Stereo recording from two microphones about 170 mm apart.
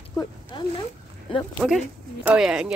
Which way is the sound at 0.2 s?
25° left (ahead or behind).